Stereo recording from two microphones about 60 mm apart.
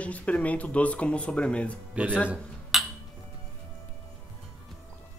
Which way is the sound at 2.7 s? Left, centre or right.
Centre.